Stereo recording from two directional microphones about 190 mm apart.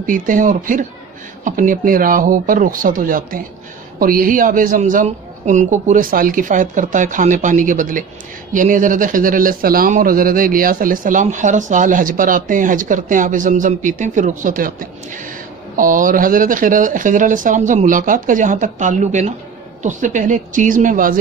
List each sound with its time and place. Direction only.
0.0 s speech: 45° right (ahead or behind)